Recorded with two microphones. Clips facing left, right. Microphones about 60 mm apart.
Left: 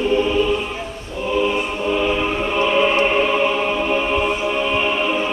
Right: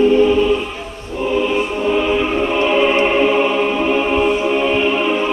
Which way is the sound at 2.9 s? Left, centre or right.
Right.